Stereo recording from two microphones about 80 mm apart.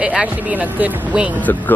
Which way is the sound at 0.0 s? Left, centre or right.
Centre.